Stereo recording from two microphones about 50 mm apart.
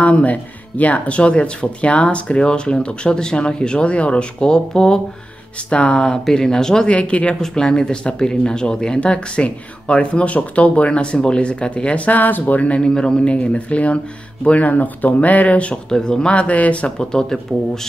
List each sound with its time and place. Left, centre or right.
0.0 s speech: left
6.2 s speech: centre
6.9 s speech: left
15.7 s speech: centre